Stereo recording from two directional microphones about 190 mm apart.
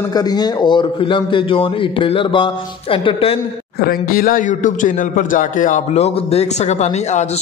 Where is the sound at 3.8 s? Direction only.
50° left (ahead or behind).